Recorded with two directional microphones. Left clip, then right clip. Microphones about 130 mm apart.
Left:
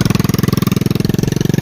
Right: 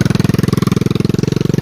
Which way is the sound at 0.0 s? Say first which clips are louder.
Even; 90° left.